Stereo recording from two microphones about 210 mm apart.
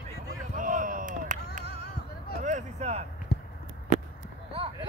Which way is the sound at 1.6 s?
50° left (ahead or behind).